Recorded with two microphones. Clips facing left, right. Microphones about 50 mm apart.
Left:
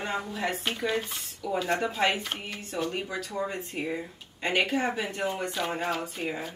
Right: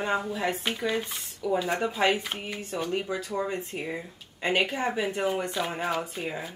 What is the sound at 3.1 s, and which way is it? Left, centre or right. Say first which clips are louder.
Speech: right 2 dB; right.